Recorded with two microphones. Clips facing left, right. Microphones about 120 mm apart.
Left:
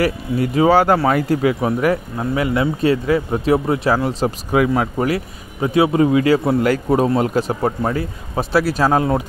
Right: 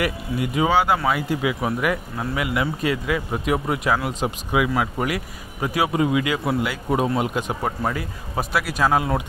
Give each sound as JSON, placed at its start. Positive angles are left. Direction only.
{"t": 0.0, "sound": "a man's voice", "side_deg": 40}